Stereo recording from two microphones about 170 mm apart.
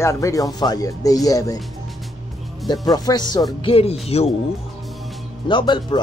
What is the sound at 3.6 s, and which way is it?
Speech, 35° left (ahead or behind).